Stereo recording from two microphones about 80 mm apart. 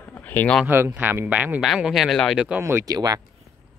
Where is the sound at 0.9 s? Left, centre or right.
Right.